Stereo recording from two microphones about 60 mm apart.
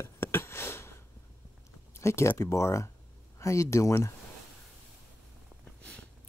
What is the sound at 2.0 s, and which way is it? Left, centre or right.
Speech, left.